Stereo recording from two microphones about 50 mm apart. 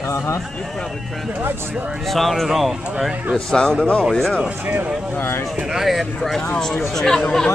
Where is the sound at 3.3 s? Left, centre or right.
Centre.